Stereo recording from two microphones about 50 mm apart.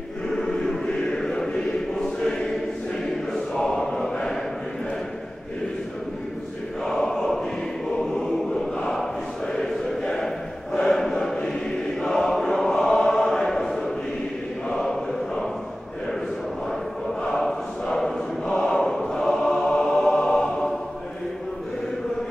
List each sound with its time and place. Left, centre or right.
0.3 s chant: centre
3.3 s choir: centre
6.8 s choir: centre
9.5 s a sound: centre
12.0 s choir: centre
14.7 s chant: centre
17.2 s choir: centre